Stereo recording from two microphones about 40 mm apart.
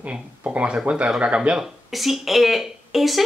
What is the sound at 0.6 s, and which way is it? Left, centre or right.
Speech, right.